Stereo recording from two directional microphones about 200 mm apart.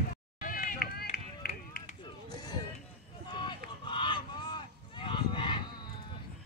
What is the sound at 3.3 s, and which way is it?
Goose, 20° left (ahead or behind).